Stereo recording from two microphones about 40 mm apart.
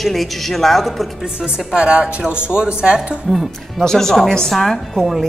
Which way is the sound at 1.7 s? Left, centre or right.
Right.